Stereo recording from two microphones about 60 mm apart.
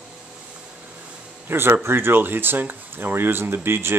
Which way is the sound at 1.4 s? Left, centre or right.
Right.